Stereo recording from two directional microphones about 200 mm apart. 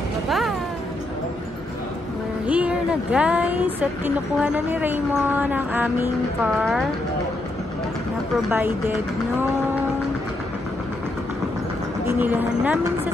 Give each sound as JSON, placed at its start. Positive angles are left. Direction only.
{"t": 0.3, "sound": "a sound", "side_deg": 0}
{"t": 2.4, "sound": "speech", "side_deg": -5}
{"t": 6.6, "sound": "speech", "side_deg": 0}
{"t": 8.5, "sound": "speech", "side_deg": -10}
{"t": 12.2, "sound": "speech", "side_deg": -10}